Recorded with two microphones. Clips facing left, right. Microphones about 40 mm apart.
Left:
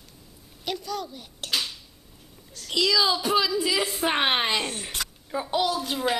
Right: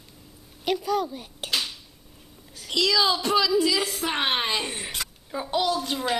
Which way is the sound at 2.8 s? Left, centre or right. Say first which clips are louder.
Even; centre.